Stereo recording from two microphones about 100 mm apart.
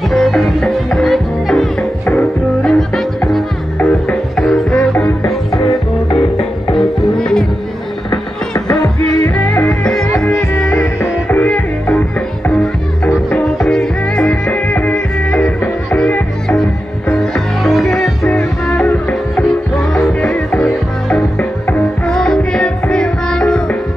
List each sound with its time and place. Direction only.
0.1 s music: centre (ahead or behind)
6.8 s music: 5° left (ahead or behind)
8.1 s music: 35° left (ahead or behind)
9.4 s music: 20° left (ahead or behind)
9.7 s music: 5° left (ahead or behind)
11.0 s music: 15° left (ahead or behind)